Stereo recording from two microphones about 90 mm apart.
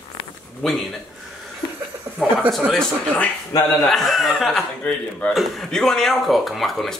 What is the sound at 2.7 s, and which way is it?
Speech, 5° left (ahead or behind).